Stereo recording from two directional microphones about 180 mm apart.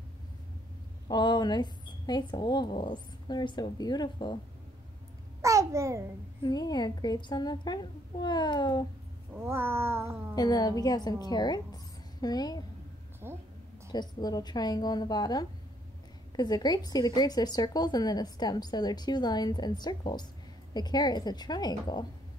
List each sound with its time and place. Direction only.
1.0 s a woman's voice: 25° left (ahead or behind)
5.4 s babbling: 15° right (ahead or behind)
6.4 s a woman's voice: 20° left (ahead or behind)
9.3 s cat: 15° right (ahead or behind)
10.3 s a woman's voice: 20° left (ahead or behind)
13.2 s a woman's voice: 15° right (ahead or behind)
13.9 s a woman's voice: 25° left (ahead or behind)